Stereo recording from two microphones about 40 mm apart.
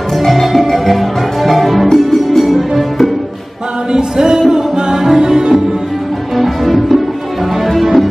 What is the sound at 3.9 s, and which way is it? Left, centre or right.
Music, centre.